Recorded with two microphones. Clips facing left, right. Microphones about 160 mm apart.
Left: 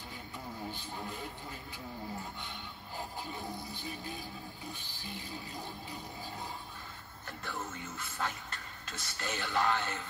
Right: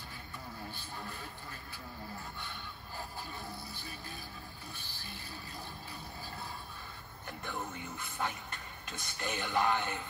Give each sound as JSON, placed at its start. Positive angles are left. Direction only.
{"t": 0.7, "sound": "vehicle", "side_deg": 15}
{"t": 3.0, "sound": "music", "side_deg": 15}
{"t": 7.2, "sound": "speech", "side_deg": -15}